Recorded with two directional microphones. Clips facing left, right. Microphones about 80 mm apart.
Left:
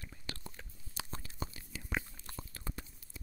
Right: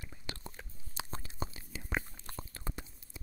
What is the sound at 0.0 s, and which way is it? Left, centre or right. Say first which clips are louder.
Chewing: right 1 dB; centre.